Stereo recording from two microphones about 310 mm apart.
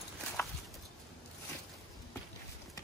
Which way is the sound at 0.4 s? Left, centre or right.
Centre.